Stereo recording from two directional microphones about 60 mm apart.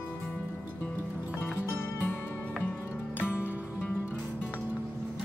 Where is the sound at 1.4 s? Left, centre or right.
Left.